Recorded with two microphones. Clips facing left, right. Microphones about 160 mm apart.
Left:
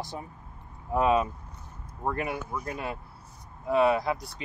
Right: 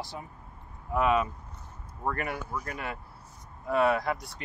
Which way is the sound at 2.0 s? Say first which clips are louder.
Left 2 dB; 20° left (ahead or behind).